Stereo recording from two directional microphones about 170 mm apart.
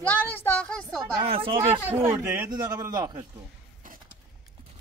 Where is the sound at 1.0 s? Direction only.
35° right (ahead or behind).